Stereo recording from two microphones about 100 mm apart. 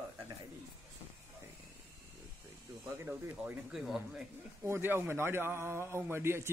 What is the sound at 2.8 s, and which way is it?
Speech, 25° right (ahead or behind).